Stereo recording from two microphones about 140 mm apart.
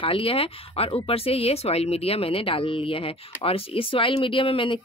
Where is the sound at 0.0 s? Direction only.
40° left (ahead or behind).